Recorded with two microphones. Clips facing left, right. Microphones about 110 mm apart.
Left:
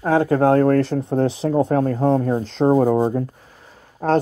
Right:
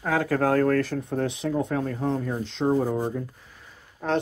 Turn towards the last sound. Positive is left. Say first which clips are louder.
# left 8 dB
turn(degrees=40)  # may be behind; listen again after turning